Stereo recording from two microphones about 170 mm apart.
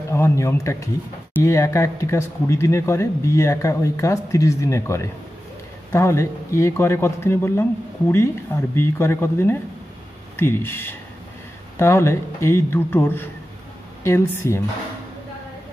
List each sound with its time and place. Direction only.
0.1 s speech: 15° left (ahead or behind)